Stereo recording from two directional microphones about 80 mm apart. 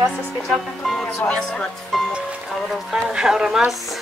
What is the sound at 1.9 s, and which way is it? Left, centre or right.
Music, centre.